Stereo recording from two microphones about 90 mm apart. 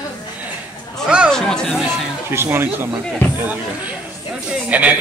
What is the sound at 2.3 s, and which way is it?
Speech, 25° right (ahead or behind).